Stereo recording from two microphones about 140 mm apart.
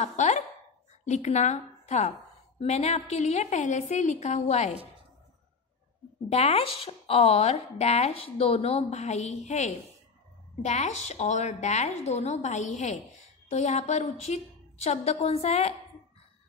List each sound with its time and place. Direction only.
0.0 s a woman's voice: 55° left (ahead or behind)
6.2 s a woman's voice: 45° left (ahead or behind)